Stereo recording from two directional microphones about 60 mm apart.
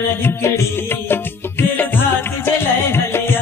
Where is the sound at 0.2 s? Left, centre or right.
Left.